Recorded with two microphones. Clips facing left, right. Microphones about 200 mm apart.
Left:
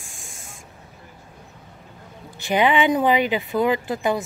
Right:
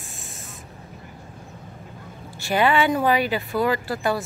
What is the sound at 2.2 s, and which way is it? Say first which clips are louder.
Speech: left 1 dB; 20° left (ahead or behind).